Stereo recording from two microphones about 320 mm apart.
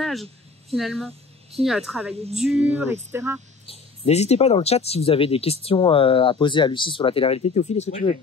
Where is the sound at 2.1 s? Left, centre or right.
Centre.